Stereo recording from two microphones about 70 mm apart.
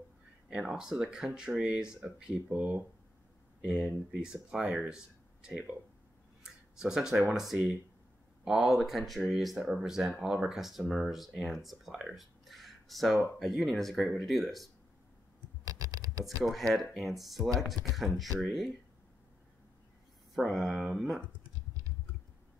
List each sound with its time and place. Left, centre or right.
0.5 s speech: centre
6.4 s a sound: centre
8.5 s speech: centre
15.6 s computer keyboard: right
16.4 s speech: centre
20.3 s speech: centre